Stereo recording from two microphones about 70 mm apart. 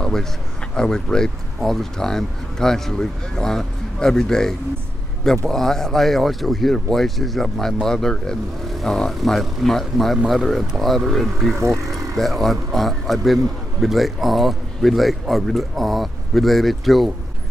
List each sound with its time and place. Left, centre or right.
0.0 s a sound: centre
0.7 s a man's voice: centre
11.6 s vehicle: right
12.2 s a man's voice: centre